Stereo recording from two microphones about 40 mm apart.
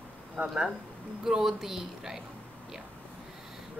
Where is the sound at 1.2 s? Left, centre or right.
Centre.